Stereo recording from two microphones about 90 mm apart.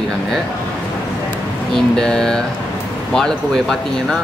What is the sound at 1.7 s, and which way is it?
Speech, 5° left (ahead or behind).